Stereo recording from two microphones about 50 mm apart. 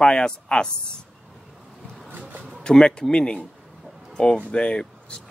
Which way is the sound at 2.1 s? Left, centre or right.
Right.